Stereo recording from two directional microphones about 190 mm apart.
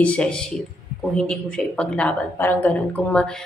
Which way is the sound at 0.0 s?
5° left (ahead or behind).